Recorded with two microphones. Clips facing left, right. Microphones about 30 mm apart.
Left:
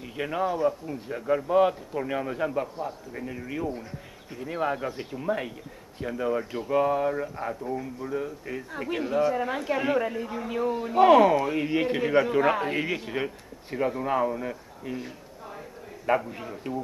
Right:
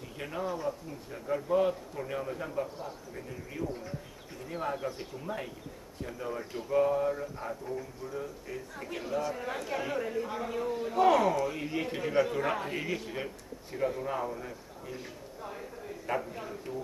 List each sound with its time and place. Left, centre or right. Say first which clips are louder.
0.0 s speech: left 8 dB; left
10.2 s a man's voice: left 2 dB; centre
10.5 s speech: left 8 dB; left
16.1 s speech: left 8 dB; left